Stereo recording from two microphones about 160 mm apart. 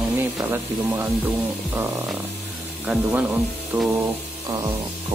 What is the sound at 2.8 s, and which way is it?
Speech, 10° right (ahead or behind).